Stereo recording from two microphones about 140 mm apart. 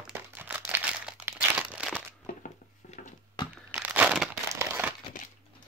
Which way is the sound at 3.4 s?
30° left (ahead or behind).